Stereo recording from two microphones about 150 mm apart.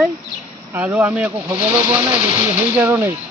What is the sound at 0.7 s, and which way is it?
Speech, 15° right (ahead or behind).